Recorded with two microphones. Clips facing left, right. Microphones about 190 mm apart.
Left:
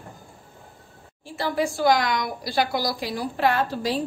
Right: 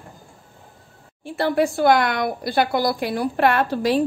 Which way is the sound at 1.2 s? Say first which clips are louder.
Right 5 dB; 60° right (ahead or behind).